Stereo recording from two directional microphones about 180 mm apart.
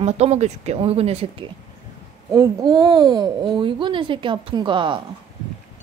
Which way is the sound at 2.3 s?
20° right (ahead or behind).